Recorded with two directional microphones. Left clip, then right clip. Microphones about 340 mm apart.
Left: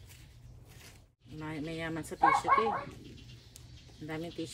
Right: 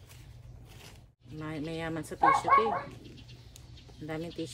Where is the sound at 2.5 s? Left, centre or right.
Right.